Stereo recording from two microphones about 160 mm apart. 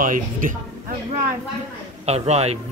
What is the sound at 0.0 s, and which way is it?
Speech, 55° right (ahead or behind).